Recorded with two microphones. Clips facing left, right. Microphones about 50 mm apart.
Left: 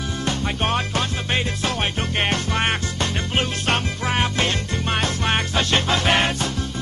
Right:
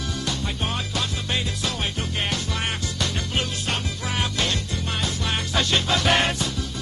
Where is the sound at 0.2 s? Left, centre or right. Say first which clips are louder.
Left 6 dB; left.